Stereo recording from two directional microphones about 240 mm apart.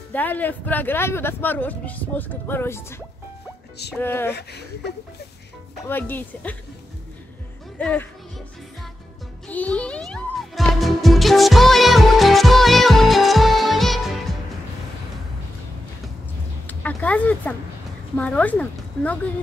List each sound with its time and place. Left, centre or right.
0.1 s speech: centre
4.4 s speech: left
5.9 s speech: centre
7.8 s speech: centre
9.5 s music: centre
16.6 s a sound: centre
18.1 s speech: centre